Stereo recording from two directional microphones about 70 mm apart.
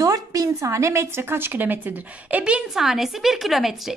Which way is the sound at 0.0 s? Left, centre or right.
Right.